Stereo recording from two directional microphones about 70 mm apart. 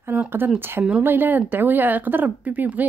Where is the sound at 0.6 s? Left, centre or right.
Right.